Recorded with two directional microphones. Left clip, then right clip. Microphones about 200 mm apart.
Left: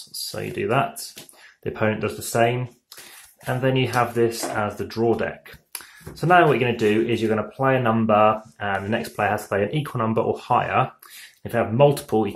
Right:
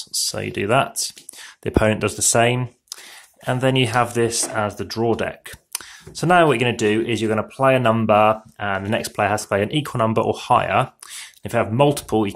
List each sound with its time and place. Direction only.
0.3 s speech: 40° right (ahead or behind)